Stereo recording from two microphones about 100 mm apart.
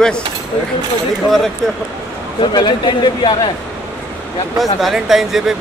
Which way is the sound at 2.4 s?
50° left (ahead or behind).